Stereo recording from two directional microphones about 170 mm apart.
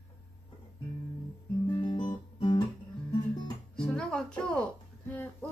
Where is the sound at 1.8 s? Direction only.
30° left (ahead or behind).